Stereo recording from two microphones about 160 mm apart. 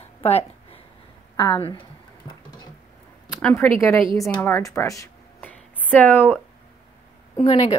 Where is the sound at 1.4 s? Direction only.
30° left (ahead or behind).